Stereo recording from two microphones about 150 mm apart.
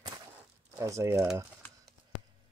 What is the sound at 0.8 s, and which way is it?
Speech, 20° right (ahead or behind).